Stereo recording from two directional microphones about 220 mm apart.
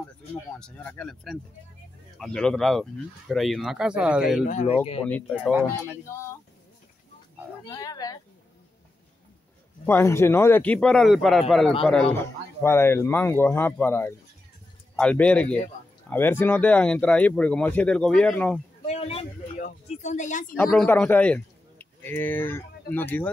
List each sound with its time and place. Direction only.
0.6 s speech: 5° left (ahead or behind)
4.5 s speech: 35° left (ahead or behind)
5.0 s speech: 5° left (ahead or behind)
5.5 s speech: 5° right (ahead or behind)
7.6 s speech: 15° left (ahead or behind)
9.8 s speech: 10° left (ahead or behind)
18.9 s speech: 30° left (ahead or behind)
20.5 s a man's voice: 10° left (ahead or behind)